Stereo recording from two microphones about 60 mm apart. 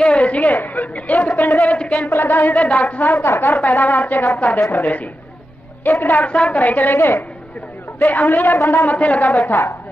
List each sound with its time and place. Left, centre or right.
0.0 s a woman's voice: centre
1.8 s speech: centre
2.0 s speech: left
2.7 s a woman's voice: centre
3.0 s speech: left
6.3 s a woman's voice: centre
6.6 s speech: left
8.0 s speech: left
8.9 s speech: left